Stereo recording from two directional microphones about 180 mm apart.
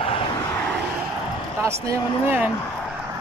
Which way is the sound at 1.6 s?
15° right (ahead or behind).